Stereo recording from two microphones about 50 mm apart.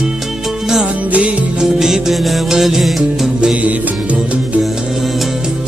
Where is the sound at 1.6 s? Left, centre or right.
Centre.